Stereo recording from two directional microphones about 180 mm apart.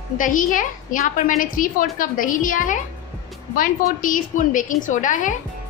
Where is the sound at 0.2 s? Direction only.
45° left (ahead or behind).